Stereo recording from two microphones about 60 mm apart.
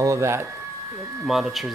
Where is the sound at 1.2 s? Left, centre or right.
Centre.